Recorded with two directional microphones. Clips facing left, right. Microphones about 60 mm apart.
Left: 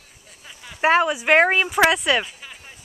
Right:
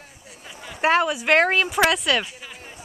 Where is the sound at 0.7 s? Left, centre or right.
Centre.